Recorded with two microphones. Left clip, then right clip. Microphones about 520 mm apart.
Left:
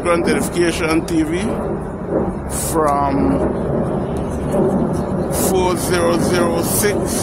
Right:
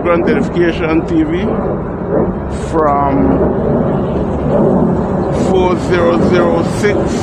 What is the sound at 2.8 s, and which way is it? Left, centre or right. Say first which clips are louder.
Speech: right 4 dB; left.